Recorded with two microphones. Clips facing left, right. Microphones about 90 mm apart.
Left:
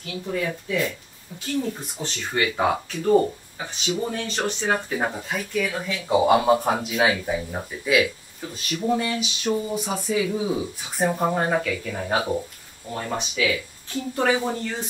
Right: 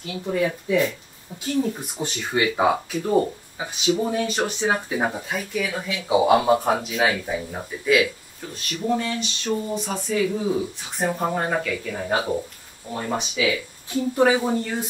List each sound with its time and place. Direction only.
0.3 s speech: 15° right (ahead or behind)
1.3 s speech: 25° right (ahead or behind)
1.7 s speech: 10° right (ahead or behind)